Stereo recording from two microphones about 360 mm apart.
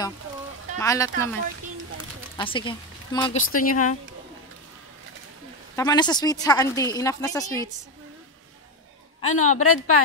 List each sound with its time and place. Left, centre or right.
0.7 s a woman's voice: centre
2.3 s speech: centre
5.8 s a woman's voice: centre
9.2 s a woman's voice: left